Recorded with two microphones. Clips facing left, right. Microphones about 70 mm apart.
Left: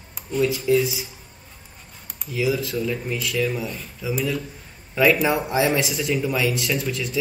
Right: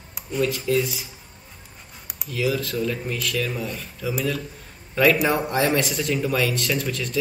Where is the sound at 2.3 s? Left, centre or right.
Centre.